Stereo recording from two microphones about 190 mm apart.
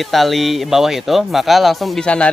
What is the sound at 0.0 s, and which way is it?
Speech, centre (ahead or behind).